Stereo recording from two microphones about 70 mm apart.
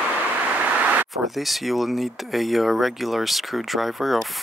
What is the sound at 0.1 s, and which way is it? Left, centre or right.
Vehicle, right.